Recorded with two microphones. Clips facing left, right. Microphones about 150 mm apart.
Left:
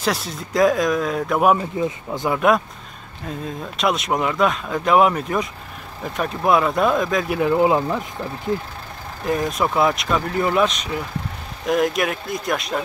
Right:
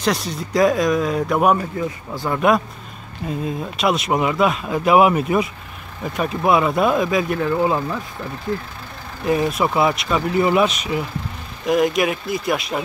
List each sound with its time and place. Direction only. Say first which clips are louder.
0.0 s speech: right 2 dB; centre (ahead or behind)
1.8 s speech: left 2 dB; 20° left (ahead or behind)
2.3 s speech: right 1 dB; centre (ahead or behind)
7.2 s speech: left 2 dB; 15° left (ahead or behind)
9.2 s speech: right 2 dB; 5° right (ahead or behind)